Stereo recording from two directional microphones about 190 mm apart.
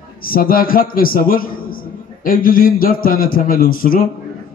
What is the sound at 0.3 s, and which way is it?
A man's voice, 50° left (ahead or behind).